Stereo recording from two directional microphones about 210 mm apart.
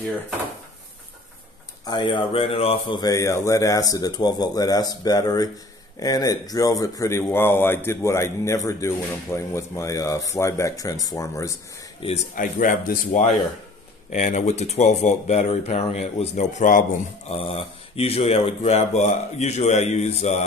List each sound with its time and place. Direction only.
1.9 s speech: 20° left (ahead or behind)
12.0 s speech: 35° left (ahead or behind)